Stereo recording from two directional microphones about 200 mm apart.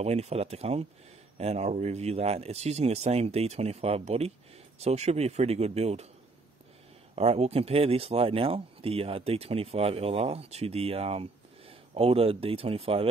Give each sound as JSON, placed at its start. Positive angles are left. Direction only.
{"t": 0.0, "sound": "speech", "side_deg": -30}
{"t": 7.2, "sound": "speech", "side_deg": -30}